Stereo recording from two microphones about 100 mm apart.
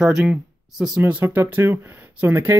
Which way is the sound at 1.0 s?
20° right (ahead or behind).